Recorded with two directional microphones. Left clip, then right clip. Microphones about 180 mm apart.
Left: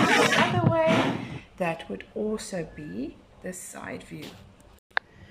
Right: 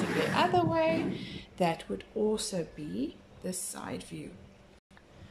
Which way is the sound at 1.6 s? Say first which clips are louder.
Left 1 dB; 20° right (ahead or behind).